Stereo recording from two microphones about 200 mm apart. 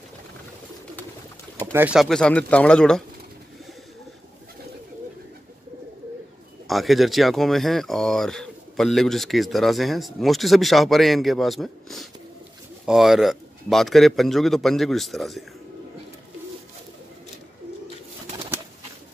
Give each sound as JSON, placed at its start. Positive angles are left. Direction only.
{"t": 1.7, "sound": "speech", "side_deg": -10}
{"t": 6.7, "sound": "speech", "side_deg": 0}